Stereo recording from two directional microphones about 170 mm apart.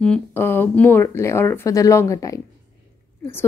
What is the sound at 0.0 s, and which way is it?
Speech, 10° left (ahead or behind).